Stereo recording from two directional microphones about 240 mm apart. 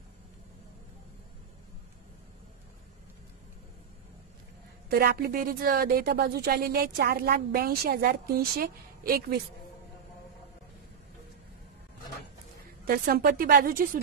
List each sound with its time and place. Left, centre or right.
4.8 s a woman's voice: right
12.8 s a woman's voice: right